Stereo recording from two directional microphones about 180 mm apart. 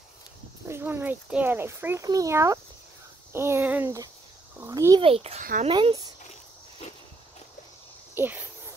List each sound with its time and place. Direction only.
0.7 s speech: 15° right (ahead or behind)
5.0 s a child's voice: 35° right (ahead or behind)
5.4 s speech: 50° right (ahead or behind)
5.7 s speech: 25° right (ahead or behind)
8.1 s speech: 10° right (ahead or behind)